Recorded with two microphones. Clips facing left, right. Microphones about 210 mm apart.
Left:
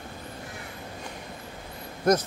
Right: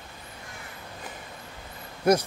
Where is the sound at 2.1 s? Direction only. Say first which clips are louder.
Right 1 dB; 10° right (ahead or behind).